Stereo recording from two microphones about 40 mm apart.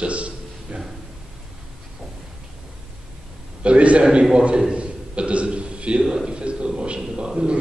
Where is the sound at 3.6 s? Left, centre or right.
Right.